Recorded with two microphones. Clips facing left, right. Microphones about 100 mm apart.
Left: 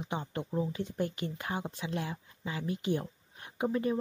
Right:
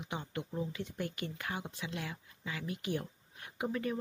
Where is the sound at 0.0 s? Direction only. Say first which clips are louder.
Left 4 dB; 30° left (ahead or behind).